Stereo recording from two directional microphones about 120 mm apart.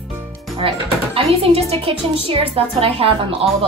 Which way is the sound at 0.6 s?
50° right (ahead or behind).